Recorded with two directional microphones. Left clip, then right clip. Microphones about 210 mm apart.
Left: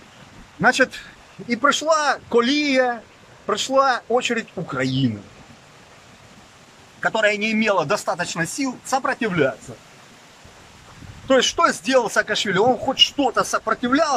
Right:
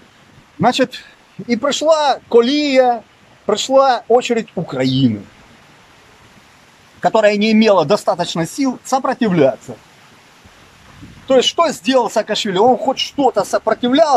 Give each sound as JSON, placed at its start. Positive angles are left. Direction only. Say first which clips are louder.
{"t": 0.6, "sound": "speech", "louder": "right 2 dB", "side_deg": -20}
{"t": 7.0, "sound": "speech", "louder": "right 7 dB", "side_deg": -20}
{"t": 11.2, "sound": "speech", "louder": "right 4 dB", "side_deg": -15}